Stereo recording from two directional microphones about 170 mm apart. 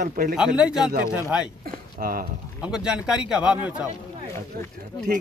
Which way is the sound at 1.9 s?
60° right (ahead or behind).